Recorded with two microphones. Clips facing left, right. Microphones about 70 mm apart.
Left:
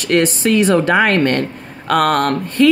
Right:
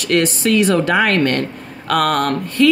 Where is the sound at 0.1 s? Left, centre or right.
Left.